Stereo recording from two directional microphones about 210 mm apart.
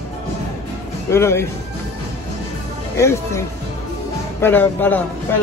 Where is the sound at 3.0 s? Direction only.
15° left (ahead or behind).